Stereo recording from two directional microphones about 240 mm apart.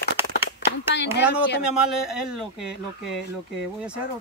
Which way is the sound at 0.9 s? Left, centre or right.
Left.